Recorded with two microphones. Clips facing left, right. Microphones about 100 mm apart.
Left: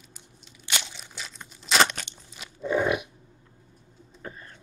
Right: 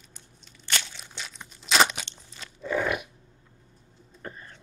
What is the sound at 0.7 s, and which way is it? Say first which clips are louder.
Crunch: even; 10° left (ahead or behind).